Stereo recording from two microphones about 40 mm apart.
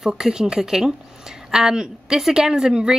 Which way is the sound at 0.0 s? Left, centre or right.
Centre.